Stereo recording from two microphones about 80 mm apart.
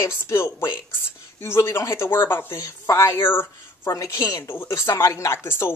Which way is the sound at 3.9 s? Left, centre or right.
Left.